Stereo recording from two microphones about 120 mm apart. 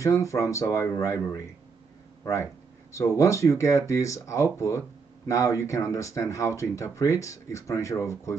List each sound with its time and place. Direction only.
0.0 s speech: 25° left (ahead or behind)